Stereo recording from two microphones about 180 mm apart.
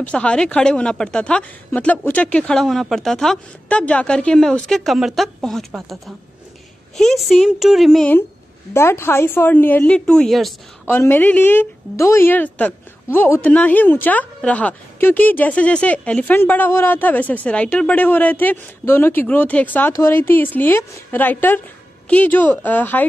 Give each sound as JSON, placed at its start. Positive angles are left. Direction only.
{"t": 0.0, "sound": "a woman's voice", "side_deg": 5}
{"t": 8.7, "sound": "a woman's voice", "side_deg": 15}
{"t": 10.9, "sound": "a woman's voice", "side_deg": 10}